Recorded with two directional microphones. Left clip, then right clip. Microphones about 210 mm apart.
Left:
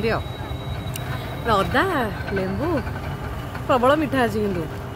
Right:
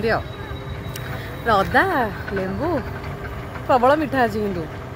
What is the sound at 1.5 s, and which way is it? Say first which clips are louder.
Speech: right 3 dB; centre (ahead or behind).